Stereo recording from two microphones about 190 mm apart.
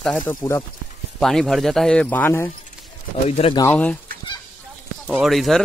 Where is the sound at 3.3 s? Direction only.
30° left (ahead or behind).